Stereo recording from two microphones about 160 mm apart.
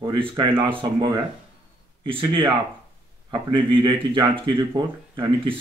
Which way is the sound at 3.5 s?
30° right (ahead or behind).